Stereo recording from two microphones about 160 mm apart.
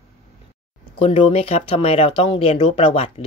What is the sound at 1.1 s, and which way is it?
Speech, 40° left (ahead or behind).